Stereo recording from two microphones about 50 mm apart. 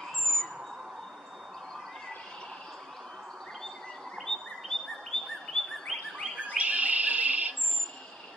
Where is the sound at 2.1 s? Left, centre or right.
Centre.